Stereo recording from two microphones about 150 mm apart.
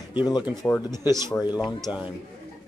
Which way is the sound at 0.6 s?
10° left (ahead or behind).